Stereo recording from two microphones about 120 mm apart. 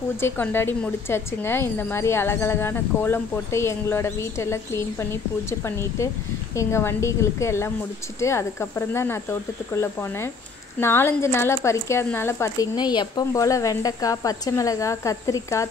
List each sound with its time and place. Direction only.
0.2 s a woman's voice: 20° left (ahead or behind)
12.7 s speech: 35° left (ahead or behind)
13.3 s a woman's voice: 25° left (ahead or behind)